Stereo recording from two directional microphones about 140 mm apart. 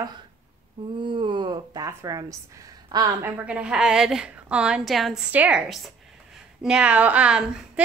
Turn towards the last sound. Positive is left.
turn(degrees=-10)  # may be behind; listen again after turning